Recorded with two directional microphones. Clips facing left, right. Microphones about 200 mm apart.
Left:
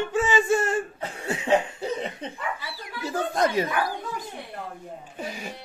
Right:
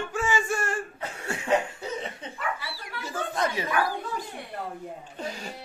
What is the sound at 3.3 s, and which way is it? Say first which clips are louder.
Speech: left 5 dB; 40° left (ahead or behind).